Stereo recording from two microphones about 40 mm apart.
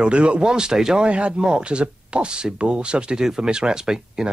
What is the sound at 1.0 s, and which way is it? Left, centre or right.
Speech, right.